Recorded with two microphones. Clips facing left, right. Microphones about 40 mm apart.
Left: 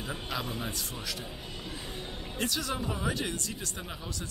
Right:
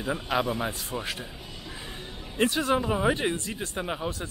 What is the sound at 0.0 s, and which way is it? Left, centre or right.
Speech, right.